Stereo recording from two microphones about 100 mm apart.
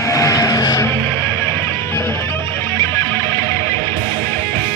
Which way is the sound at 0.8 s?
25° left (ahead or behind).